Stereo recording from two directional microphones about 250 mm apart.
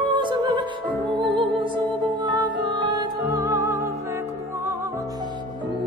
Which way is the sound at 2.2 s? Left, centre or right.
Centre.